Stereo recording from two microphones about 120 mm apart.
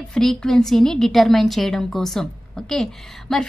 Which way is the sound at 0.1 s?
5° left (ahead or behind).